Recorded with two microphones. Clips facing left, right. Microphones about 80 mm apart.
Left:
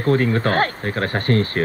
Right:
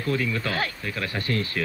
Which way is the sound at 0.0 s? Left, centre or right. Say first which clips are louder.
Left 8 dB; left.